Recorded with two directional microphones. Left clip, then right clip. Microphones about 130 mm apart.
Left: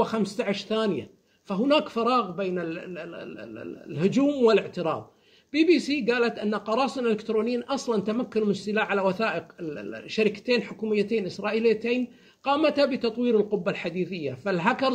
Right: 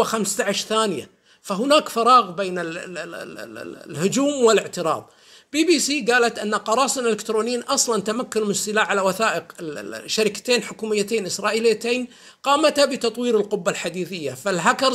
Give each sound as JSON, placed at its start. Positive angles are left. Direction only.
{"t": 0.0, "sound": "speech", "side_deg": -15}